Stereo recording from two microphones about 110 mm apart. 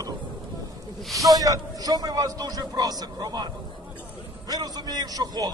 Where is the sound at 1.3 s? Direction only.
35° right (ahead or behind).